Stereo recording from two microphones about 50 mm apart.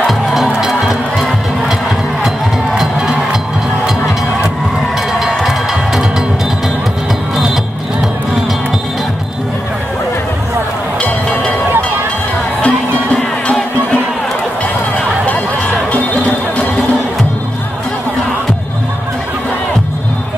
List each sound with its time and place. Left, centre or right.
0.0 s music: centre
2.2 s music: centre
5.2 s music: centre
11.0 s a sound: left
12.6 s music: left